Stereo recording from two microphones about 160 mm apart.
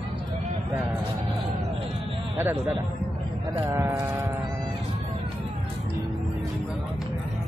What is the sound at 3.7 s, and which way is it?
Speech, 15° right (ahead or behind).